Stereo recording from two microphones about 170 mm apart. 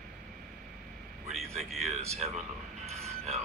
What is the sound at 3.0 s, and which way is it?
Music, 40° right (ahead or behind).